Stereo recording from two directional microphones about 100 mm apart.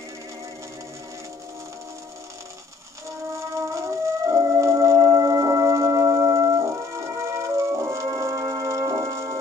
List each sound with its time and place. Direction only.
3.3 s music: 30° right (ahead or behind)